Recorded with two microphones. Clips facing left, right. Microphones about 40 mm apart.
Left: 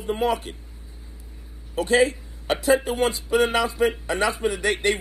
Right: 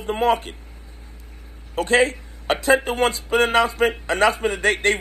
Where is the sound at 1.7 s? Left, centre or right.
Right.